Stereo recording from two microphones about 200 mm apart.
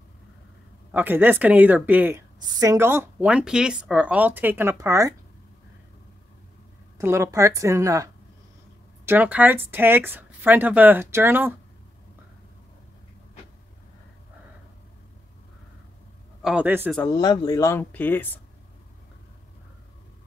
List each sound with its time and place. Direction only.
0.9 s speech: 10° right (ahead or behind)
7.0 s speech: 15° right (ahead or behind)
16.4 s speech: 5° right (ahead or behind)
17.2 s speech: 20° left (ahead or behind)